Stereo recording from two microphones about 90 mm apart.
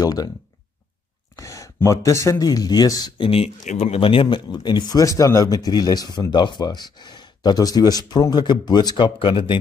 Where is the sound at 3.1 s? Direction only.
90° left; by 9.1 s 50° left (ahead or behind).